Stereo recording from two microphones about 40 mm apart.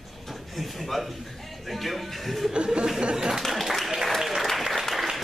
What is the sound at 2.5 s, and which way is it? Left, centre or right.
Speech, right.